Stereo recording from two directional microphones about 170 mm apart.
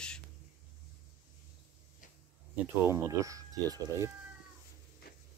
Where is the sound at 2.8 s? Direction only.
15° right (ahead or behind).